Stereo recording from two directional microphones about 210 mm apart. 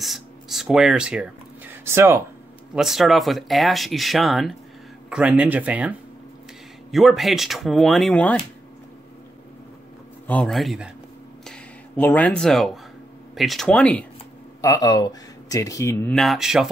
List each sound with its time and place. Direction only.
0.0 s speech: centre (ahead or behind)
2.7 s speech: centre (ahead or behind)
10.2 s speech: 5° left (ahead or behind)
12.0 s speech: 5° left (ahead or behind)
14.6 s speech: 15° left (ahead or behind); by 16.6 s centre (ahead or behind)